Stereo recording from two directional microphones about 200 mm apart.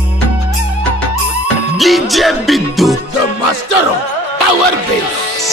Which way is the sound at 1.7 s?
Centre (ahead or behind).